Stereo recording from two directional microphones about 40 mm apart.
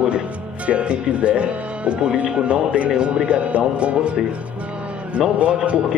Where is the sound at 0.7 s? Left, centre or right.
Right.